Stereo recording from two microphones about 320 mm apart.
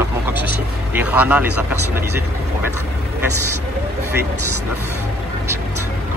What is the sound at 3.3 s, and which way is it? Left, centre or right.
Speech, right.